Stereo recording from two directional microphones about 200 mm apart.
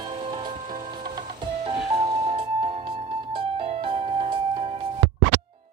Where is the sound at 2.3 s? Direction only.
25° right (ahead or behind).